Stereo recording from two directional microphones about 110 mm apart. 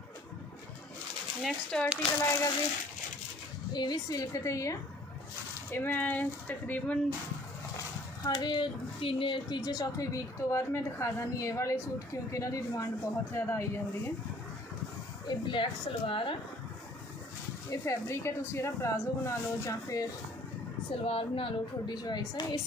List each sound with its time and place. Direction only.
1.4 s speech: 5° left (ahead or behind)
2.1 s a woman's voice: 30° left (ahead or behind)
3.7 s a woman's voice: 40° left (ahead or behind)
5.7 s speech: 20° left (ahead or behind)
8.2 s speech: 40° left (ahead or behind)
9.6 s a woman's voice: 35° left (ahead or behind)
15.2 s speech: 45° left (ahead or behind)
17.6 s a woman's voice: 25° left (ahead or behind)
20.9 s speech: 55° left (ahead or behind)
21.8 s a woman's voice: 40° left (ahead or behind)